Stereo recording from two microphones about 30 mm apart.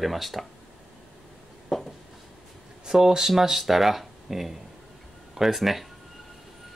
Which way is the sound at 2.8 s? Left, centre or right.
Centre.